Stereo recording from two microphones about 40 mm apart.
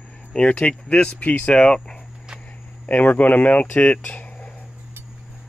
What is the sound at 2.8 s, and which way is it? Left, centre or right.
Speech, left.